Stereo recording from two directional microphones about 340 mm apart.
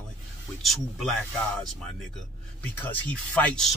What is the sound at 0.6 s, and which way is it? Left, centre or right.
Speech, centre.